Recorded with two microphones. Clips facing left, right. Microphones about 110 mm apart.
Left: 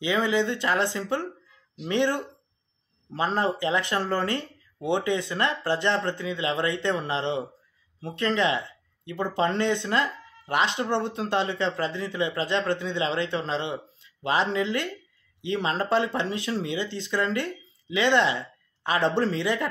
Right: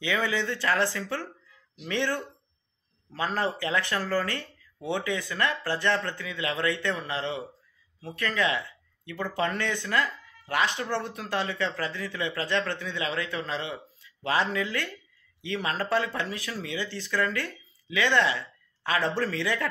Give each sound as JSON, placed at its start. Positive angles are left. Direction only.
{"t": 0.0, "sound": "speech", "side_deg": 20}